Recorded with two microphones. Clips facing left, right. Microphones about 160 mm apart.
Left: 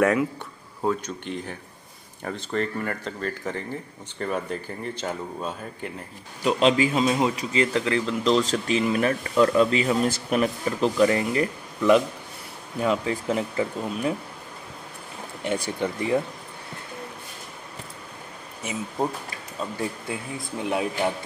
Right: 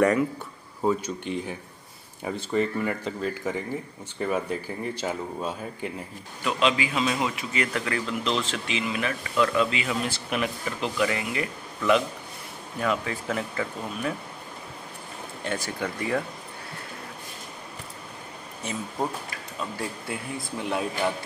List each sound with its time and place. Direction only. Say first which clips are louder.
0.0 s speech: even; centre (ahead or behind)
0.8 s speech: right 1 dB; 10° right (ahead or behind)
6.4 s a man's voice: left 5 dB; 40° left (ahead or behind)
12.8 s speech: left 3 dB; 25° left (ahead or behind)
15.4 s speech: left 4 dB; 15° left (ahead or behind)
18.6 s speech: left 2 dB; 10° left (ahead or behind)
20.6 s speech: left 2 dB; 15° left (ahead or behind)